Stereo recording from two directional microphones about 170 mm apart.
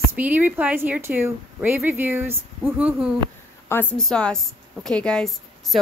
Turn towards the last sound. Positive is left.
turn(degrees=0)  # may be behind; listen again after turning